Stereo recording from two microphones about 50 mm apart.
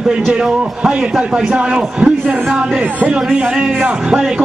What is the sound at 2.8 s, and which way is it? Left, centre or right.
Speech, right.